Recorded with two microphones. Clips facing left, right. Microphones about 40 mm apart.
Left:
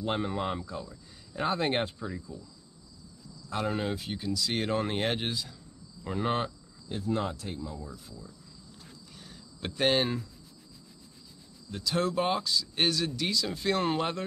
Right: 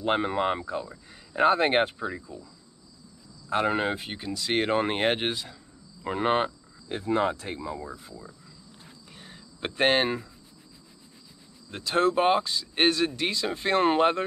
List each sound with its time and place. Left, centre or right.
0.0 s speech: right
3.4 s speech: right
7.9 s speech: right
9.1 s cricket: right
11.7 s speech: right